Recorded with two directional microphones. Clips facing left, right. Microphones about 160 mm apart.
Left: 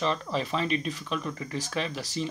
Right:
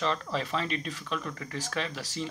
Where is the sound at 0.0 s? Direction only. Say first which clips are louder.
Left 2 dB; 15° left (ahead or behind).